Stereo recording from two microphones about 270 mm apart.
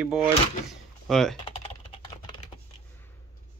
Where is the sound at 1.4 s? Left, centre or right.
Centre.